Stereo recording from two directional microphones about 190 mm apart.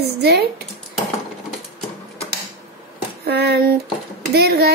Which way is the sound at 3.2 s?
60° right (ahead or behind).